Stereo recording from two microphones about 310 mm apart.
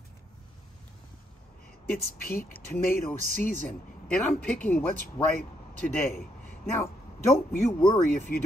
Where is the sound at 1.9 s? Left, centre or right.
Left.